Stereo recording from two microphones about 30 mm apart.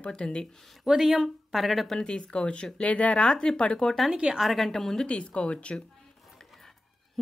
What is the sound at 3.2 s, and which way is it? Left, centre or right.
Speech, left.